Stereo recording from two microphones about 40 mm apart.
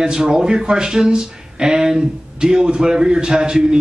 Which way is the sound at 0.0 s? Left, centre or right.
Centre.